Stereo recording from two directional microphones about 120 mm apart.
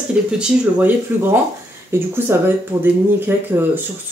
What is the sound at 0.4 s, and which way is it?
Speech, 15° right (ahead or behind).